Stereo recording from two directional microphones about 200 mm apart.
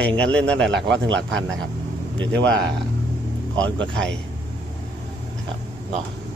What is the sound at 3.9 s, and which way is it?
Speech, 5° left (ahead or behind).